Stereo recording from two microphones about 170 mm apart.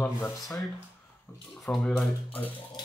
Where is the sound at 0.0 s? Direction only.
15° left (ahead or behind).